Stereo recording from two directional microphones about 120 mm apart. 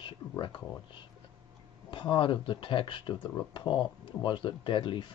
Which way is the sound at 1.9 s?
45° left (ahead or behind).